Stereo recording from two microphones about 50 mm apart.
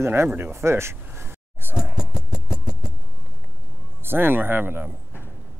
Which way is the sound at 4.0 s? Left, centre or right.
Right.